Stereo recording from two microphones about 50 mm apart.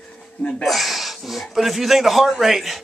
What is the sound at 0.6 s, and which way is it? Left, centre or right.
A man's voice, centre.